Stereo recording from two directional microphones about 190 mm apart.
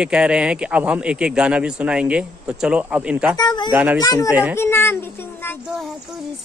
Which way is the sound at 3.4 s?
20° left (ahead or behind).